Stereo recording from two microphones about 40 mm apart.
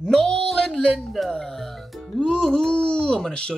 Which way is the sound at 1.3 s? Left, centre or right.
Centre.